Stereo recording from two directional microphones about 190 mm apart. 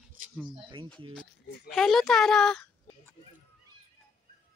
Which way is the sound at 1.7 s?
Centre (ahead or behind).